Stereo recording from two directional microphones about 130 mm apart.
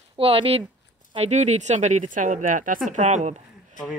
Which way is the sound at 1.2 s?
60° right (ahead or behind).